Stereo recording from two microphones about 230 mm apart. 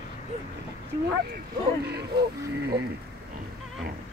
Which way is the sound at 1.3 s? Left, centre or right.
Right.